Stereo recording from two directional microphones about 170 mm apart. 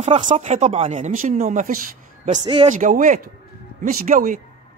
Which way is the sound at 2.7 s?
50° right (ahead or behind).